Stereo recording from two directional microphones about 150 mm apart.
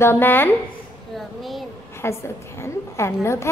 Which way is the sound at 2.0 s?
15° left (ahead or behind).